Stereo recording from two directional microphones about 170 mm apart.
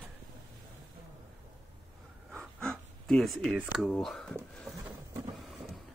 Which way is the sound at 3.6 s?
Centre (ahead or behind).